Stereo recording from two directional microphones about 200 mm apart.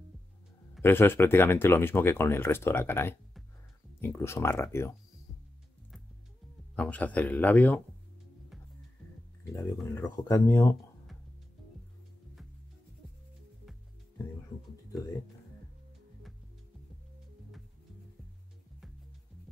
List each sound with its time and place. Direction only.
0.8 s speech: 10° left (ahead or behind)
6.7 s speech: 5° left (ahead or behind)
9.5 s speech: 15° left (ahead or behind)